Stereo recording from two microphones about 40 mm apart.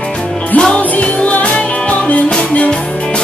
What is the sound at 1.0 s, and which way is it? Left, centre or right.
Music, left.